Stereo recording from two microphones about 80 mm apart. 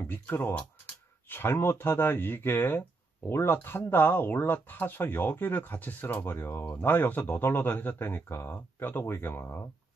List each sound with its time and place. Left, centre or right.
0.0 s speech: left